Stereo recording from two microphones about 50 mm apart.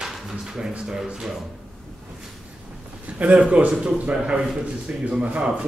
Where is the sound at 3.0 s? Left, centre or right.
Right.